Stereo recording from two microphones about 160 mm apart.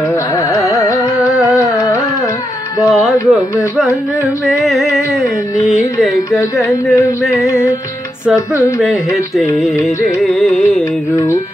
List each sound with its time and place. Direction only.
0.5 s carnatic music: 20° left (ahead or behind)
2.9 s music: 5° right (ahead or behind)
4.5 s music: centre (ahead or behind)
6.6 s a sound: 20° left (ahead or behind)
8.8 s speech: centre (ahead or behind)